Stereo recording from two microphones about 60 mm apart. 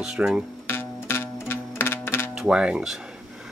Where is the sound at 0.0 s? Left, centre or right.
Centre.